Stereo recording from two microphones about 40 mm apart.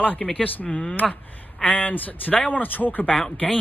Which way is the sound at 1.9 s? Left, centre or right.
Left.